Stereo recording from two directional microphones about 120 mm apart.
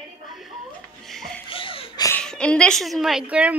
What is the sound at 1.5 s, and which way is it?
Laughter, 50° left (ahead or behind).